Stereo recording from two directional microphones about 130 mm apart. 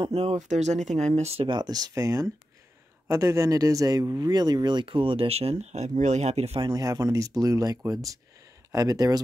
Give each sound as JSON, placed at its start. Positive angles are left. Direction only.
{"t": 0.0, "sound": "speech", "side_deg": -50}
{"t": 1.5, "sound": "speech", "side_deg": -30}
{"t": 6.6, "sound": "speech", "side_deg": -30}